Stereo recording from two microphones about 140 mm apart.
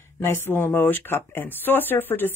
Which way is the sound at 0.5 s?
15° left (ahead or behind).